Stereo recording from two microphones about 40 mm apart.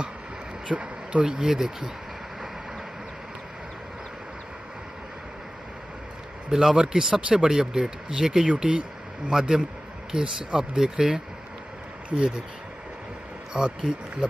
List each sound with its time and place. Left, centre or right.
0.7 s speech: right
6.5 s a man's voice: centre
9.3 s a man's voice: centre
13.5 s speech: right